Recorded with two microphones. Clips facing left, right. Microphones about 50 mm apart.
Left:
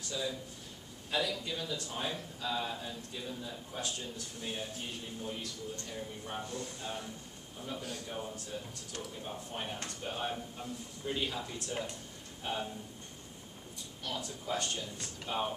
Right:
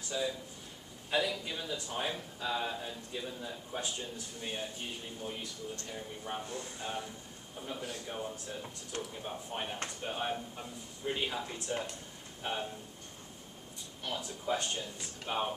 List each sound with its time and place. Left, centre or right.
0.1 s a man's voice: centre
9.2 s a man's voice: centre
14.0 s a man's voice: centre